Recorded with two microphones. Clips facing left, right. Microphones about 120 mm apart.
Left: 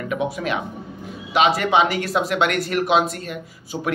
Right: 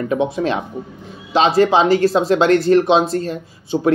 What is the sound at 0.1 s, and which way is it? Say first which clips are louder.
Speech: right 4 dB; 30° right (ahead or behind).